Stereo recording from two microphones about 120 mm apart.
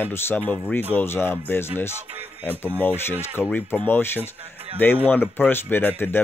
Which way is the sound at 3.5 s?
15° left (ahead or behind).